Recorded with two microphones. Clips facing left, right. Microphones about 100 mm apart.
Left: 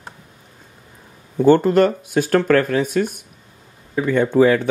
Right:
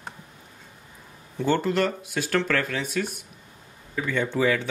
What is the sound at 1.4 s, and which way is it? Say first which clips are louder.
Speech: left 10 dB; 45° left (ahead or behind).